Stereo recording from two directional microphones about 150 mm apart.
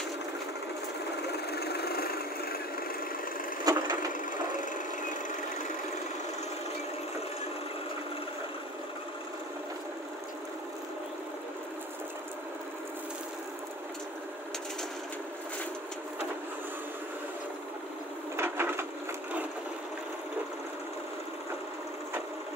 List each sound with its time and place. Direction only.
1.2 s vehicle: 90° left
3.7 s wood: 25° right (ahead or behind)
18.3 s wood: 15° right (ahead or behind)